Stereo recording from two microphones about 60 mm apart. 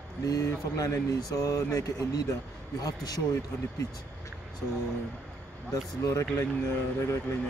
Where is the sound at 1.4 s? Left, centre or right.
Left.